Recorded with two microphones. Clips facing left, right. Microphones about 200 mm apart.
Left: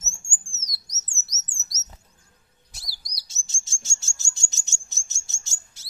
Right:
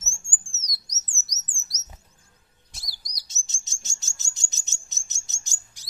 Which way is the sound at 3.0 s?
20° right (ahead or behind).